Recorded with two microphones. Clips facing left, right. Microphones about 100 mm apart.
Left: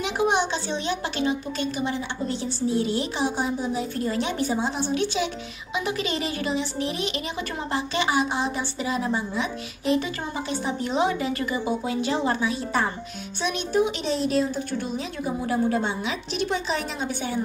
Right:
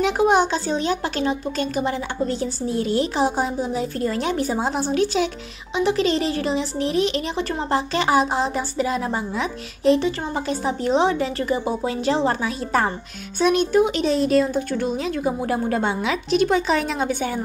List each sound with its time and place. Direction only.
0.0 s a woman's voice: 40° right (ahead or behind)
9.8 s a woman's voice: 35° right (ahead or behind); by 17.4 s 55° right (ahead or behind)